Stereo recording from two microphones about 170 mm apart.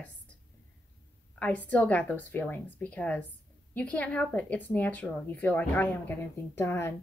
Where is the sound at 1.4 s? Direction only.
10° left (ahead or behind).